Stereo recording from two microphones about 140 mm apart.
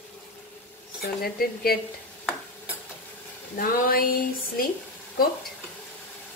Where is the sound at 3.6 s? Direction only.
90° left.